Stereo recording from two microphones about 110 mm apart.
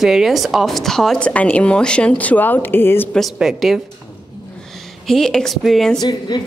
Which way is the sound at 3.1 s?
Centre (ahead or behind).